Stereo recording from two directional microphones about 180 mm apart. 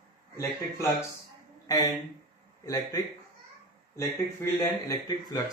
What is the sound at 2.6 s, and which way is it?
Speech, 20° left (ahead or behind).